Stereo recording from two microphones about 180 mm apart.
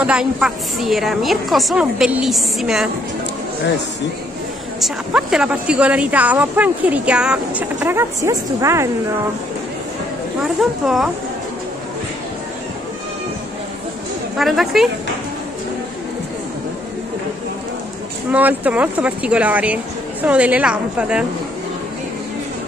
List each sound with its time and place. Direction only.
0.0 s a woman's voice: 5° right (ahead or behind)
4.7 s a woman's voice: centre (ahead or behind)
10.4 s a woman's voice: centre (ahead or behind)
14.4 s a woman's voice: centre (ahead or behind)
18.3 s a woman's voice: 10° right (ahead or behind)